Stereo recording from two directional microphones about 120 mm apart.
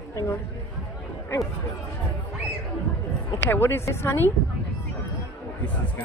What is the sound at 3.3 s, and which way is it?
Speech, 20° left (ahead or behind).